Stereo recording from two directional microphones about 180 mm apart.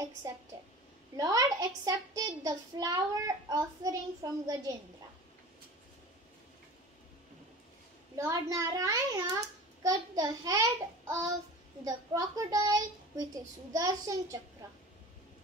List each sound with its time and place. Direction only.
0.2 s a woman's voice: 15° right (ahead or behind)
8.2 s a child's voice: 20° right (ahead or behind)